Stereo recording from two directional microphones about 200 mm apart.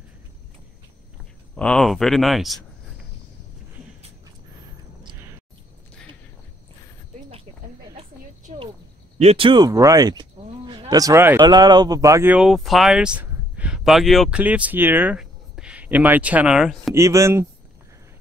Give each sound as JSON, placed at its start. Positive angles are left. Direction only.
{"t": 1.5, "sound": "speech", "side_deg": 5}
{"t": 9.2, "sound": "speech", "side_deg": -30}
{"t": 10.4, "sound": "a sound", "side_deg": -30}
{"t": 10.9, "sound": "speech", "side_deg": -15}
{"t": 16.9, "sound": "speech", "side_deg": -15}